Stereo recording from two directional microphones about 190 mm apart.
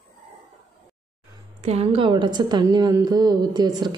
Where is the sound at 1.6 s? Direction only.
35° right (ahead or behind).